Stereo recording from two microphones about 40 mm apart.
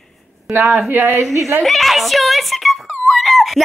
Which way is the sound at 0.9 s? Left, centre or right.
Right.